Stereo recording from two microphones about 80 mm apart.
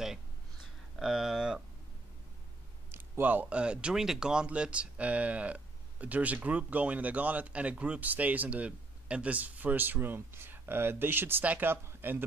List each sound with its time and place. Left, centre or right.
0.9 s speech: centre
2.9 s speech: right